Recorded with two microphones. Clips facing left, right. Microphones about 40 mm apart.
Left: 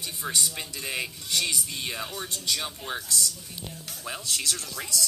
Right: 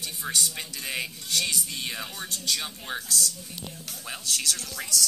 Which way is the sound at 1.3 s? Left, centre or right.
Centre.